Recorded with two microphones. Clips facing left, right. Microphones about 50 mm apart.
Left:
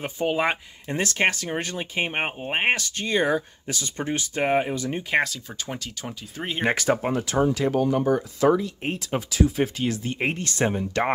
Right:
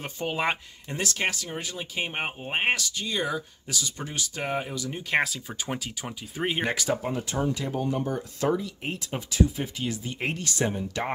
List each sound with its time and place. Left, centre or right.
0.0 s speech: centre
0.8 s speech: left
2.0 s speech: left
2.9 s speech: left
5.1 s speech: centre
6.6 s speech: left
7.1 s speech: left
9.0 s speech: left
10.1 s speech: left
10.7 s speech: left